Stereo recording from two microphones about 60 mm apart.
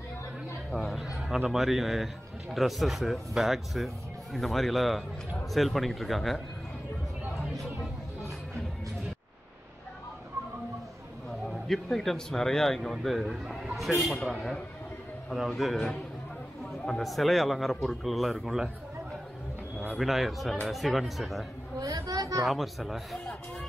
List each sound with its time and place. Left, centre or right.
0.7 s speech: centre
11.4 s speech: centre
15.3 s speech: centre
20.0 s speech: centre
21.7 s a sound: right
22.5 s speech: centre